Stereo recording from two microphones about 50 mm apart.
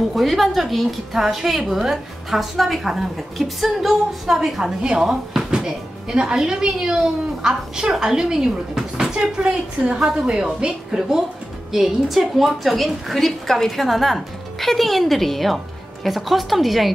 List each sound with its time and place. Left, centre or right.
0.1 s a woman's voice: centre